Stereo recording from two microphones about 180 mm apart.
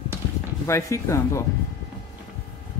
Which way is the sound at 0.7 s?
15° left (ahead or behind).